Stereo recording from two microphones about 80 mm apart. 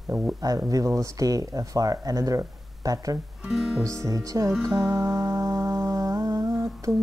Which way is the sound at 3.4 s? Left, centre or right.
Centre.